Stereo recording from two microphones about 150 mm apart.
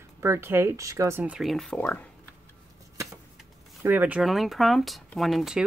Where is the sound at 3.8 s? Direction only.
15° right (ahead or behind).